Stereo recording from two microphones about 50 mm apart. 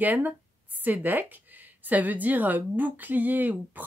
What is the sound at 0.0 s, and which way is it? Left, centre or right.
A woman's voice, right.